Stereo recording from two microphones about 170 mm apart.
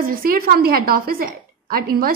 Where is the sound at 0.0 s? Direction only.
60° right (ahead or behind).